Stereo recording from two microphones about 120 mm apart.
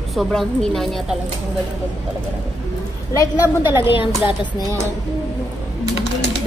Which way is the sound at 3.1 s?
30° left (ahead or behind).